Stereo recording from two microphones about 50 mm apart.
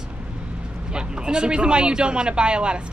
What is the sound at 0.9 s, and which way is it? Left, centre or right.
A man's voice, centre.